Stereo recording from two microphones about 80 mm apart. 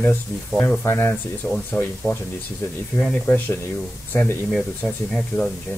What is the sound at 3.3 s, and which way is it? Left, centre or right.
Speech, left.